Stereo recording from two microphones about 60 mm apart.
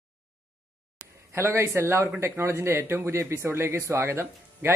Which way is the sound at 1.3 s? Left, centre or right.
Right.